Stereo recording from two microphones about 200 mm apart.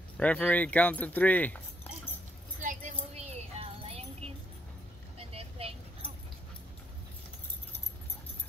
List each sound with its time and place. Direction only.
0.2 s speech: 10° left (ahead or behind)
2.6 s music: 40° right (ahead or behind)
5.3 s vehicle: 30° right (ahead or behind)